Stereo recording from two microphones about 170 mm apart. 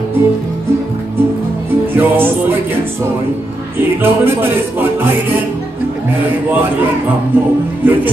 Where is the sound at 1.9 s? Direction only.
10° right (ahead or behind).